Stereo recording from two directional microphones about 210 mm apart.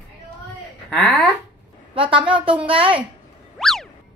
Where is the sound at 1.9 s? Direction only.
25° right (ahead or behind).